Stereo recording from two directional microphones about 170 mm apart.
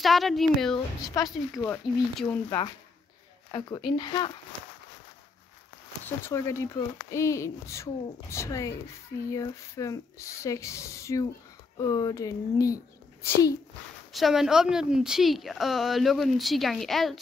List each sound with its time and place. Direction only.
0.0 s a woman's voice: centre (ahead or behind)
0.7 s a child's voice: 20° left (ahead or behind)
1.6 s speech: 10° left (ahead or behind)
3.5 s a child's voice: 25° left (ahead or behind)
6.0 s a child's voice: 15° left (ahead or behind)
14.1 s a woman's voice: centre (ahead or behind)